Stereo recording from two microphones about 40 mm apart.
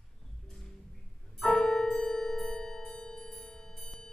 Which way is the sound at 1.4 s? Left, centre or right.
Centre.